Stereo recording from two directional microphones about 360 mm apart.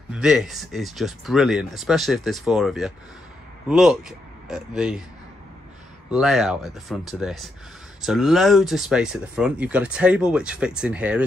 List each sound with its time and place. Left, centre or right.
0.1 s speech: centre
6.1 s speech: centre